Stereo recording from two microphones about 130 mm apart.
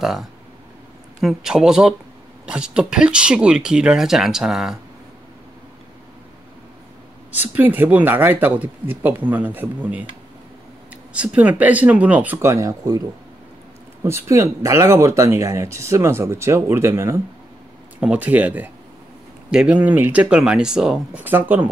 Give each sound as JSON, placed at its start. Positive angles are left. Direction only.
{"t": 0.0, "sound": "speech", "side_deg": 0}
{"t": 7.3, "sound": "speech", "side_deg": -15}
{"t": 11.1, "sound": "speech", "side_deg": -10}
{"t": 14.0, "sound": "speech", "side_deg": -20}